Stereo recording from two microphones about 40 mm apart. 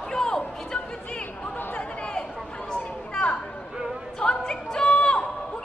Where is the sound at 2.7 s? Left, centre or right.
Left.